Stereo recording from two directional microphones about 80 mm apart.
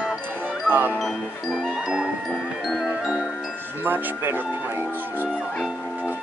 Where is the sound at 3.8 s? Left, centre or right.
Right.